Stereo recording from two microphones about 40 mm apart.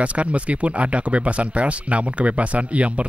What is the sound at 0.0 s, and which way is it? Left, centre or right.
Speech, right.